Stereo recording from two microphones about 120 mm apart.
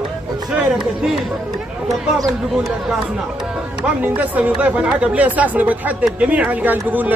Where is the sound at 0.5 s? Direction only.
5° right (ahead or behind).